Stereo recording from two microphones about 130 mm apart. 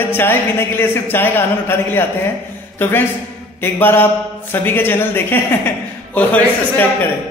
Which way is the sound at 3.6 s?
15° left (ahead or behind).